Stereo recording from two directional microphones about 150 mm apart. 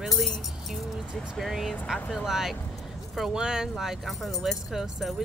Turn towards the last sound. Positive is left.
turn(degrees=0)  # may be behind; listen again after turning